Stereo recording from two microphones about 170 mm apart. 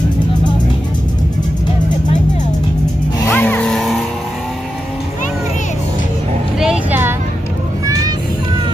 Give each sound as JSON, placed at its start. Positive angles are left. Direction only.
{"t": 3.3, "sound": "music", "side_deg": 10}
{"t": 6.6, "sound": "music", "side_deg": -5}
{"t": 7.8, "sound": "vehicle", "side_deg": -20}